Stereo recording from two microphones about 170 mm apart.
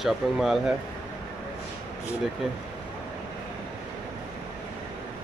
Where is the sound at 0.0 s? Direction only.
Centre (ahead or behind).